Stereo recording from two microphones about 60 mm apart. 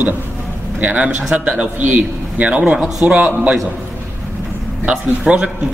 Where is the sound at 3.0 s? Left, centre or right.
Right.